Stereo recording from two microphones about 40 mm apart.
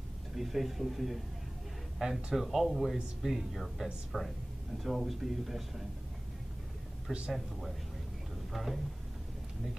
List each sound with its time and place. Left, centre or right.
0.4 s speech: centre
7.1 s speech: centre
8.5 s speech: centre